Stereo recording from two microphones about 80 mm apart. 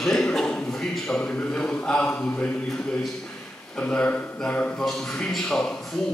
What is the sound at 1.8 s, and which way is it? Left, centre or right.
Speech, centre.